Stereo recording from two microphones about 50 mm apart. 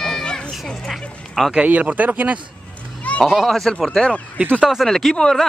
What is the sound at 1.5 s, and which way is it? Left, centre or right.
Speech, right.